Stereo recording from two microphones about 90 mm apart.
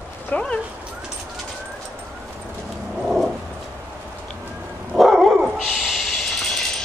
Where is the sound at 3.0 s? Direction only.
Centre (ahead or behind).